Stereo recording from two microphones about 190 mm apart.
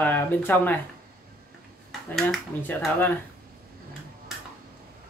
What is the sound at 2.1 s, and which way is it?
Speech, 5° left (ahead or behind).